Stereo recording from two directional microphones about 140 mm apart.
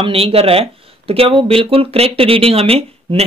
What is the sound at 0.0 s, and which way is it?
Speech, 45° right (ahead or behind).